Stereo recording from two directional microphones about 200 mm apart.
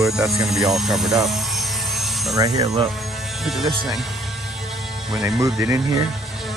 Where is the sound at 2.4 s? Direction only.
15° right (ahead or behind).